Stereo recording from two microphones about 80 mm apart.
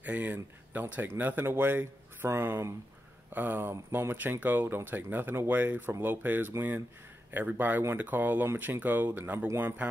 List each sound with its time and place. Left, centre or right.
0.0 s speech: right